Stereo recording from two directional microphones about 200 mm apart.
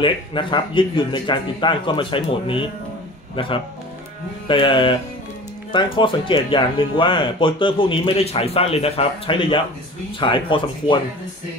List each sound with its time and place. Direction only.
0.0 s speech: 25° left (ahead or behind)